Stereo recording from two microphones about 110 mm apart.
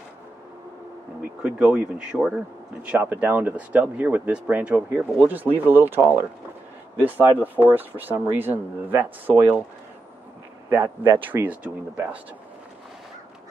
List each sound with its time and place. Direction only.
1.4 s speech: 10° right (ahead or behind)
7.0 s speech: 15° right (ahead or behind)
10.7 s speech: 20° right (ahead or behind)